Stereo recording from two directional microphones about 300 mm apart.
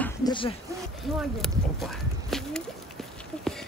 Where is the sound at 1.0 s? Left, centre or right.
Centre.